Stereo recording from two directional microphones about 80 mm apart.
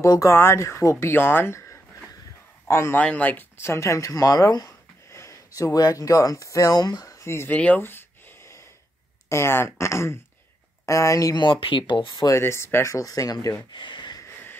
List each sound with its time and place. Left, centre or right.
0.0 s speech: left
3.0 s speech: centre; by 4.7 s left
5.1 s speech: left
7.4 s speech: centre
7.8 s a sound: left
9.3 s speech: left
11.3 s speech: left
12.4 s speech: left
13.7 s a sound: left